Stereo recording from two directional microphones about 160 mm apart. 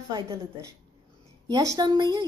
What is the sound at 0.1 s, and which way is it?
A woman's voice, 20° right (ahead or behind).